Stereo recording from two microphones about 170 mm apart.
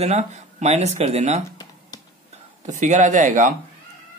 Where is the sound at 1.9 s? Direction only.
25° left (ahead or behind).